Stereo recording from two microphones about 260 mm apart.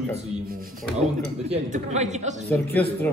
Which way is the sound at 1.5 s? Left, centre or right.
Right.